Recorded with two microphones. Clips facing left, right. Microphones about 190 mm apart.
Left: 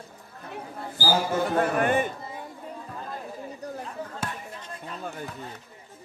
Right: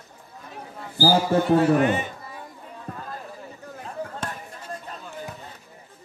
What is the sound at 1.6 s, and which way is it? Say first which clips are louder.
Speech: right 3 dB; 50° left (ahead or behind).